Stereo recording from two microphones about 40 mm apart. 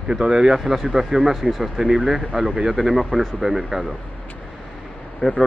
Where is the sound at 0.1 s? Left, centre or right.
Centre.